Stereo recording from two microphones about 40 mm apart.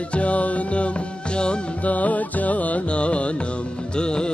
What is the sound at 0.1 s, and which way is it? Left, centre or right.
Music, left.